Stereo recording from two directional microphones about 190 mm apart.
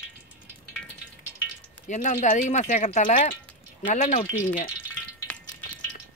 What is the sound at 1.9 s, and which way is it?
Speech, 40° left (ahead or behind).